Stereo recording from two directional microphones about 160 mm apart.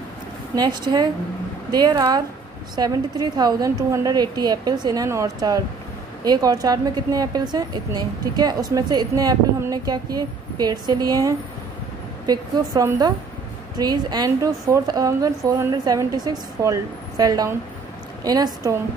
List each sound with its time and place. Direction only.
0.6 s a woman's voice: 25° right (ahead or behind)